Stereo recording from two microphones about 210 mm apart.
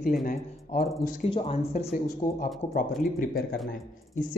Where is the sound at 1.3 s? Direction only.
25° left (ahead or behind).